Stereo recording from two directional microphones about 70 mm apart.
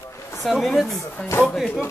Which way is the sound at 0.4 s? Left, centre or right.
Centre.